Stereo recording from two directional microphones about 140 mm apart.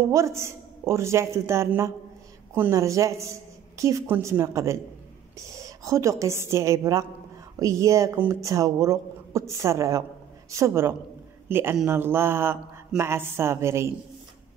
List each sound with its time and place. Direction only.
0.1 s a woman's voice: 20° right (ahead or behind)